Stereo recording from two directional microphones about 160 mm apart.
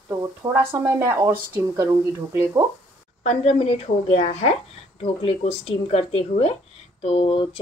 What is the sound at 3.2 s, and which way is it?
Speech, 40° left (ahead or behind).